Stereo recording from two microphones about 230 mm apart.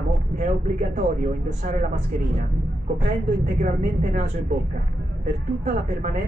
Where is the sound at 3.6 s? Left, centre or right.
Right.